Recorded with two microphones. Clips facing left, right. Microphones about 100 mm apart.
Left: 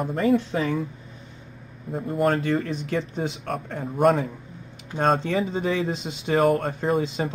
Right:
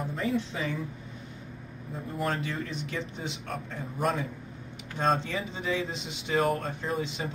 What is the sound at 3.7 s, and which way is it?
Speech, 65° left (ahead or behind).